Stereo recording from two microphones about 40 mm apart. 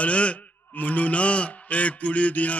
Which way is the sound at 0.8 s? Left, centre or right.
Left.